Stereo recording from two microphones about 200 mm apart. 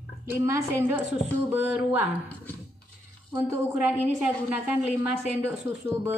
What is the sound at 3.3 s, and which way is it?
A woman's voice, 10° right (ahead or behind).